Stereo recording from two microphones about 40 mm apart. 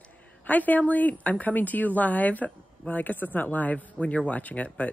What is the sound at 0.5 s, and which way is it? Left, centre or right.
A woman's voice, left.